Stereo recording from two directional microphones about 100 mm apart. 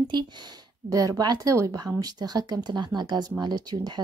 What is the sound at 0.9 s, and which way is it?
Speech, 35° right (ahead or behind).